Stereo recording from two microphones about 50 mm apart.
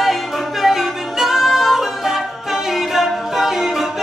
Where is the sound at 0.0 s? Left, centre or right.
Centre.